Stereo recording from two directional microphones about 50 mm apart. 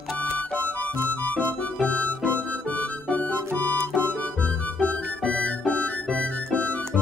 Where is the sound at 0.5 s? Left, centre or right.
Left.